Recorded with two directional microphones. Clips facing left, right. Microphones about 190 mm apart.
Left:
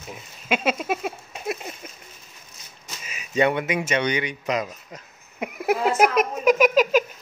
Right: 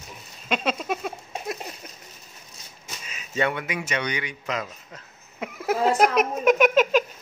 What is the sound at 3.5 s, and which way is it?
Speech, 20° left (ahead or behind).